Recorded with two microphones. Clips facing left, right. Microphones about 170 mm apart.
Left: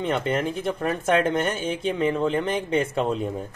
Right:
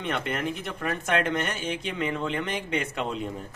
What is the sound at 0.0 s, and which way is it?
Speech, 30° left (ahead or behind).